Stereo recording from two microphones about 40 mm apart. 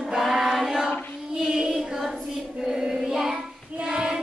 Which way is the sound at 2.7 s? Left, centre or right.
Centre.